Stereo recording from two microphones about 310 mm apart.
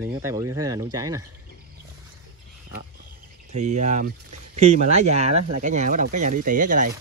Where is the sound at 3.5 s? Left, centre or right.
Right.